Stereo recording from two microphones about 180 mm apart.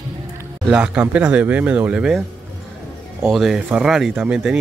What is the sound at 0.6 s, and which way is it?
Speech, 5° right (ahead or behind).